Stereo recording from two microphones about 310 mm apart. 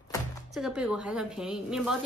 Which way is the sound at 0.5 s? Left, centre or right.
Centre.